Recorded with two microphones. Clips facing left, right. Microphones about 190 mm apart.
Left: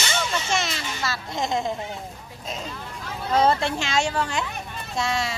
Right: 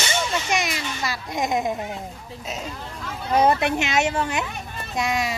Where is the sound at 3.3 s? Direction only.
15° right (ahead or behind).